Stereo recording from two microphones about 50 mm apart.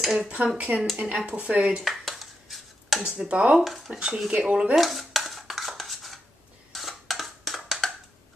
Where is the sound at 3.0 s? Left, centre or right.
Centre.